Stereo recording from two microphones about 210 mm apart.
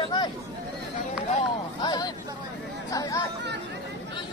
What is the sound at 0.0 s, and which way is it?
Chatter, 20° left (ahead or behind).